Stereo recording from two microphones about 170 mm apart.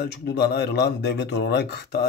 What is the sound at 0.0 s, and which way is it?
Speech, 75° left (ahead or behind).